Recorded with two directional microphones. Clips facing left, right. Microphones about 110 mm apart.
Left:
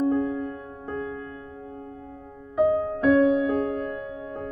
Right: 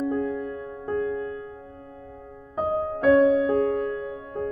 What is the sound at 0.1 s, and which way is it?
Music, 35° left (ahead or behind).